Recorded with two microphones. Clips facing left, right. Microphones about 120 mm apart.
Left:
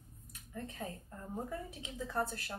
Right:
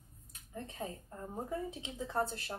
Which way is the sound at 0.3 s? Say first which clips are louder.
Left 1 dB; 25° right (ahead or behind).